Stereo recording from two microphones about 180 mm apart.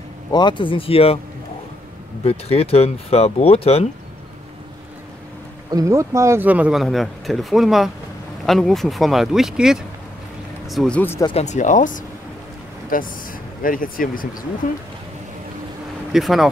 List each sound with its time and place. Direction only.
0.3 s speech: 25° left (ahead or behind)
2.2 s speech: 35° left (ahead or behind)
5.7 s speech: 20° right (ahead or behind); by 11.2 s 10° left (ahead or behind)
11.2 s speech: 40° left (ahead or behind)
16.1 s speech: centre (ahead or behind)